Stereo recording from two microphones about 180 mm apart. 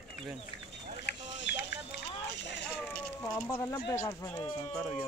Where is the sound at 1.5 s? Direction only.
75° left (ahead or behind).